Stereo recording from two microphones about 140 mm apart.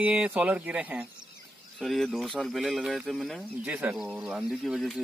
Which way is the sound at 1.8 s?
Centre (ahead or behind).